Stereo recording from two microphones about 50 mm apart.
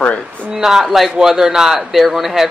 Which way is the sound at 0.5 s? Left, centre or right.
Centre.